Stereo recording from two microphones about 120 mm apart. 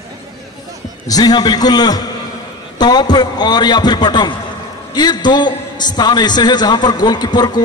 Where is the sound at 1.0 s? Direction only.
30° left (ahead or behind).